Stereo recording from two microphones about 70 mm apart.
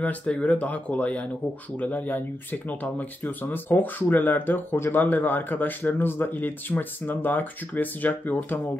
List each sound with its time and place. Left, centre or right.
0.0 s speech: centre